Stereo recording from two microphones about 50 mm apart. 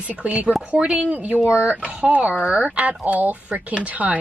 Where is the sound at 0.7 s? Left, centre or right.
Centre.